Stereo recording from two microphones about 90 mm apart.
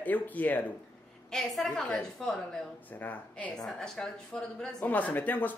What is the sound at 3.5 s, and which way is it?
Speech, 5° left (ahead or behind).